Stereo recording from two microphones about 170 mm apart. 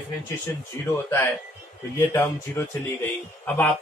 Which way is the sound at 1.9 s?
15° left (ahead or behind).